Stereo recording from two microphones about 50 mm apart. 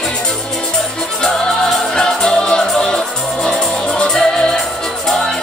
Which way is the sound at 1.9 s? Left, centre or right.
Centre.